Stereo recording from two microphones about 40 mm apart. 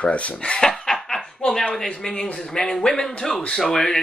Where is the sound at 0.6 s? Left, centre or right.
Centre.